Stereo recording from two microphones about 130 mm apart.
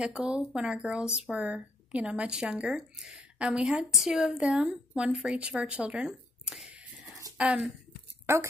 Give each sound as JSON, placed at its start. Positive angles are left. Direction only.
{"t": 0.0, "sound": "speech", "side_deg": -5}
{"t": 8.3, "sound": "a woman's voice", "side_deg": -20}